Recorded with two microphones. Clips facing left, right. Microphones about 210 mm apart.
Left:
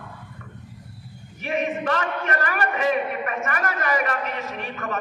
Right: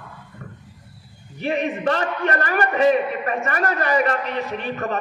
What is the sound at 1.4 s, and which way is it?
A man's voice, 35° right (ahead or behind).